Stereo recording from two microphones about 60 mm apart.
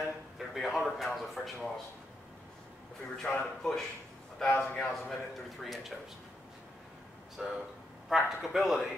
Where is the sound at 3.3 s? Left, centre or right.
Centre.